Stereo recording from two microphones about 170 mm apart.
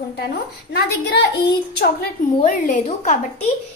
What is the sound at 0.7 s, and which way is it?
Speech, 75° left (ahead or behind).